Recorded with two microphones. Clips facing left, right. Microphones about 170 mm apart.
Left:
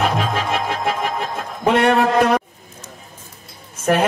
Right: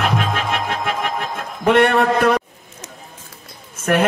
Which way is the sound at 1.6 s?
55° right (ahead or behind).